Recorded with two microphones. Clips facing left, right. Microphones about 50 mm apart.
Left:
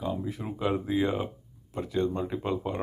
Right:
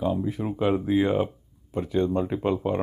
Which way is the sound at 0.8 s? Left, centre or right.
Centre.